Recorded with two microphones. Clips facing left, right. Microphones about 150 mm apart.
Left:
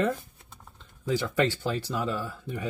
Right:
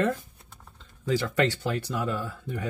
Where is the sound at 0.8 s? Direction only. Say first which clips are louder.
Right 1 dB; 15° left (ahead or behind).